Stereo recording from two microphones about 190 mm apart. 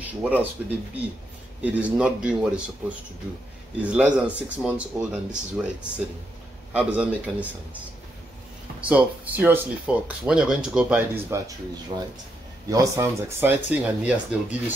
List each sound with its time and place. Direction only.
0.0 s speech: 10° right (ahead or behind)
8.8 s speech: 10° right (ahead or behind)